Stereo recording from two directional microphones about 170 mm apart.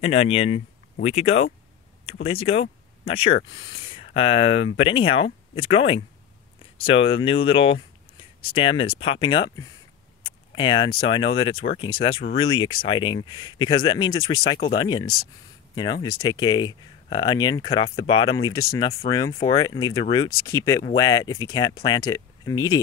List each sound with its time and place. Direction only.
0.0 s speech: 35° left (ahead or behind); by 22.8 s 20° left (ahead or behind)